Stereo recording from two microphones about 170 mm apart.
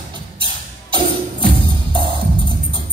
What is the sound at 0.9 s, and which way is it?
Music, 30° right (ahead or behind).